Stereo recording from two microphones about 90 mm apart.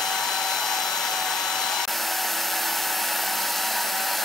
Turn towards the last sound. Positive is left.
turn(degrees=0)  # may be behind; listen again after turning